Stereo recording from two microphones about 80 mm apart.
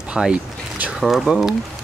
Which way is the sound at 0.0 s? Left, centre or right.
Centre.